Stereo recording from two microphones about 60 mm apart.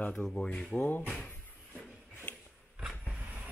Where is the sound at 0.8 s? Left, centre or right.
Left.